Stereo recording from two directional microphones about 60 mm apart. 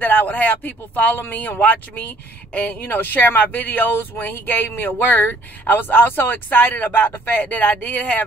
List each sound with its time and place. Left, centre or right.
0.0 s speech: left